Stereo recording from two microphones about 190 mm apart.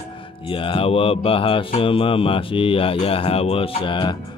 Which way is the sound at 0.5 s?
25° left (ahead or behind).